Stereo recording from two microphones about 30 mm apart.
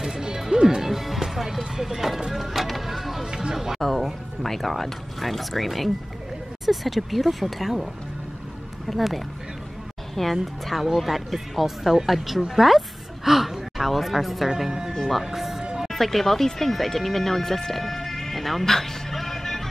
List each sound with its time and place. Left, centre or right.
0.0 s music: right
0.9 s music: centre
1.8 s speech: centre
2.3 s music: centre
4.4 s speech: centre
10.3 s speech: centre
15.9 s speech: centre